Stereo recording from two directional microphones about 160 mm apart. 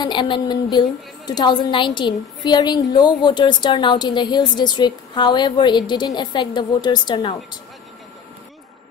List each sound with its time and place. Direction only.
0.0 s a woman's voice: 30° left (ahead or behind)